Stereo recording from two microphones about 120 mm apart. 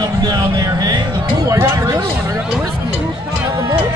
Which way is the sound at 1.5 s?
25° right (ahead or behind).